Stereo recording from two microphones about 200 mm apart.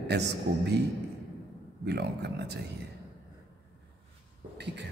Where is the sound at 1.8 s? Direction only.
55° right (ahead or behind).